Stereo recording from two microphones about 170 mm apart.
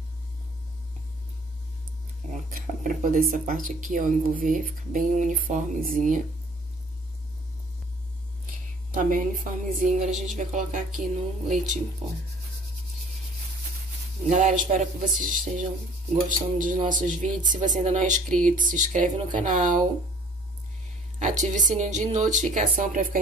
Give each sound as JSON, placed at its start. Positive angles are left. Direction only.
{"t": 2.3, "sound": "speech", "side_deg": -45}
{"t": 8.9, "sound": "speech", "side_deg": -50}
{"t": 14.3, "sound": "speech", "side_deg": -45}
{"t": 21.2, "sound": "speech", "side_deg": -45}